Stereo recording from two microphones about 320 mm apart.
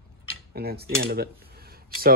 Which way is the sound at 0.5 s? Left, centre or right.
Right.